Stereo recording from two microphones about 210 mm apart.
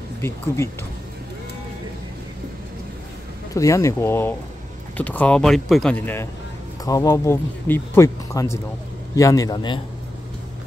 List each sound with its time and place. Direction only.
3.5 s speech: 15° left (ahead or behind)